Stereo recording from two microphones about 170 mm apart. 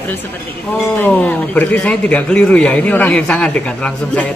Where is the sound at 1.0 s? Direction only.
10° left (ahead or behind).